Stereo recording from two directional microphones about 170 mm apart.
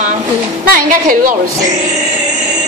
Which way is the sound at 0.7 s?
55° right (ahead or behind).